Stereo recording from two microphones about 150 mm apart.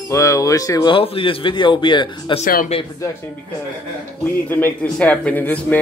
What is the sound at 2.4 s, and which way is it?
Speech, 65° left (ahead or behind).